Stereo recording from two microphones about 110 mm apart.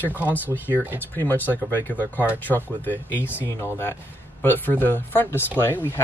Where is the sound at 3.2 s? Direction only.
15° right (ahead or behind).